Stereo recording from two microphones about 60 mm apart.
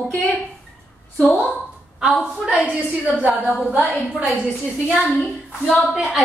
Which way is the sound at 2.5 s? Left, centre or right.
Centre.